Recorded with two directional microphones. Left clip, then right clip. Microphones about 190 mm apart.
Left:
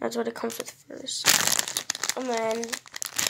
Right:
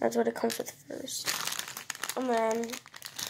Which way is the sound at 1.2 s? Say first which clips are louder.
Left 13 dB; 45° left (ahead or behind).